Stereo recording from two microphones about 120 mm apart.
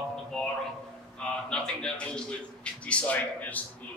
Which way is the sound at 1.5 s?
10° left (ahead or behind).